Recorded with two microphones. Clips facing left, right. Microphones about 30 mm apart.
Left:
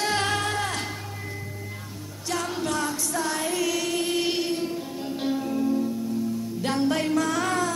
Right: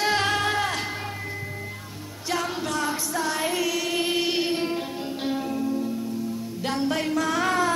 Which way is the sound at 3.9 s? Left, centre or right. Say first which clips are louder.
Right 1 dB; centre.